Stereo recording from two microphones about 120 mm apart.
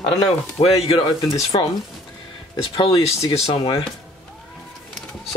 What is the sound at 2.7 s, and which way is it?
Speech, 45° left (ahead or behind).